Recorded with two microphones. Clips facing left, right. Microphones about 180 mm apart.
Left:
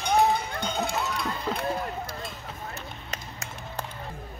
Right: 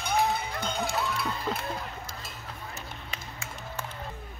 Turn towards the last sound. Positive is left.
turn(degrees=40)  # may be behind; listen again after turning